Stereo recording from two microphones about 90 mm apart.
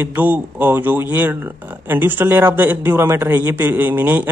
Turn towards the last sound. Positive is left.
turn(degrees=-20)  # may be behind; listen again after turning